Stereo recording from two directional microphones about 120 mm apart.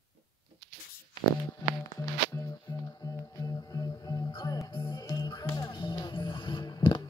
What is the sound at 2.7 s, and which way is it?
Music, 30° left (ahead or behind).